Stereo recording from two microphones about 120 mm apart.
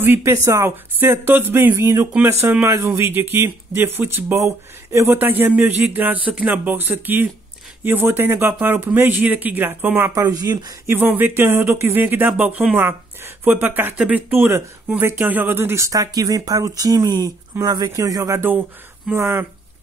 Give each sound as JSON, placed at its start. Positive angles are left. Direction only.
{"t": 0.0, "sound": "speech", "side_deg": -20}
{"t": 10.2, "sound": "speech", "side_deg": -35}
{"t": 10.9, "sound": "speech", "side_deg": -15}